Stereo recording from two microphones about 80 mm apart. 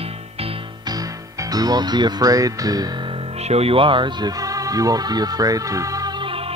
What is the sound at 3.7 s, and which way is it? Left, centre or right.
Speech, right.